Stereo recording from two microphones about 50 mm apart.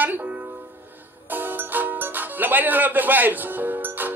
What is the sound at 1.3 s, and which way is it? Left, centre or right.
Speech, right.